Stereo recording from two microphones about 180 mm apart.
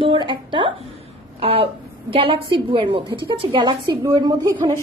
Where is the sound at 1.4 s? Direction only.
30° right (ahead or behind).